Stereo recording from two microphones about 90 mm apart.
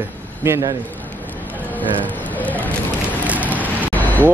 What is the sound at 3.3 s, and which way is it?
Vehicle, 15° right (ahead or behind).